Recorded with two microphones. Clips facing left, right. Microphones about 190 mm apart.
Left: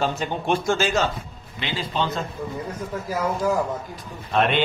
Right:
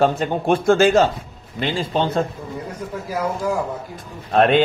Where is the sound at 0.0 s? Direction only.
50° right (ahead or behind).